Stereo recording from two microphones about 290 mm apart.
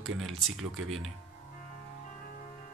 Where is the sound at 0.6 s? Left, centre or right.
Right.